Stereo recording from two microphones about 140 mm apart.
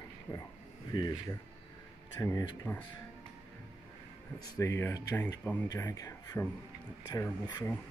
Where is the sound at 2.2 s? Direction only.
15° left (ahead or behind).